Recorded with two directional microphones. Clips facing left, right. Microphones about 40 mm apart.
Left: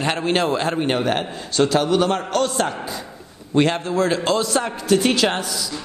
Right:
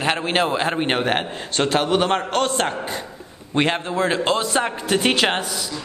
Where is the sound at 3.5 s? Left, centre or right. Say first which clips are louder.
Left 2 dB; right.